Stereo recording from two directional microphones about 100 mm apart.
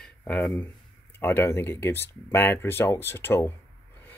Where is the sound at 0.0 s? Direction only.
15° left (ahead or behind).